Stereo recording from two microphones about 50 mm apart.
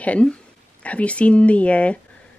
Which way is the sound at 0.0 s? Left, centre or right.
Left.